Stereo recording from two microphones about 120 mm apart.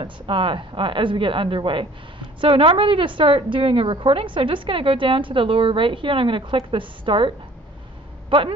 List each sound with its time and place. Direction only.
0.0 s a woman's voice: 45° right (ahead or behind)